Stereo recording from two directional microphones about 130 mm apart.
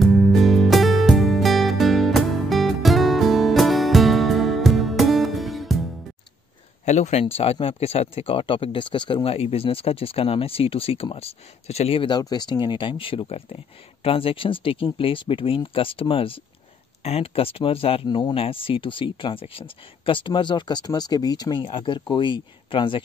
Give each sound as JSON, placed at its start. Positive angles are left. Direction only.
{"t": 0.0, "sound": "music", "side_deg": 0}
{"t": 6.9, "sound": "speech", "side_deg": 60}